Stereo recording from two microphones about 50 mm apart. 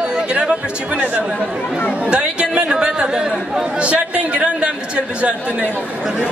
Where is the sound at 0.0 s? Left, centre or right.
Right.